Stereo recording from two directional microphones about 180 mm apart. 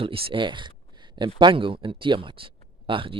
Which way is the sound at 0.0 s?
30° right (ahead or behind).